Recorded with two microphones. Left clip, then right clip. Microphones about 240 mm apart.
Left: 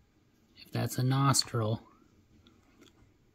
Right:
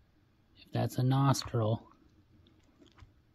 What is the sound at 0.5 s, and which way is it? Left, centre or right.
Speech, centre.